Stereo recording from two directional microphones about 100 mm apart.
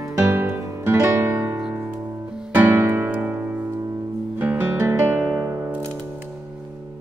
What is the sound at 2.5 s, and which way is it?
Music, 20° right (ahead or behind).